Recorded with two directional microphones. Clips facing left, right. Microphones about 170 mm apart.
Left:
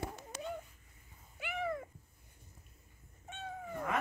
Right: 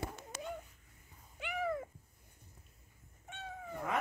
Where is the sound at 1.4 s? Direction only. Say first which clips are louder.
Right 1 dB; centre (ahead or behind).